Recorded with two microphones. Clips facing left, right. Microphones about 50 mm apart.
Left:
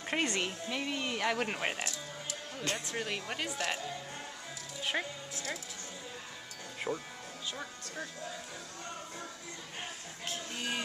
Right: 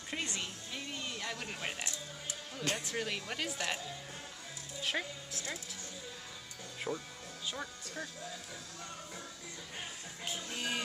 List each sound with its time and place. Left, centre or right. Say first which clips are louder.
0.1 s speech: left 7 dB; left
0.7 s speech: left 7 dB; left
1.5 s speech: left 5 dB; left
2.6 s speech: even; centre
4.8 s speech: left 2 dB; centre
6.9 s speech: left 2 dB; centre
10.5 s speech: even; centre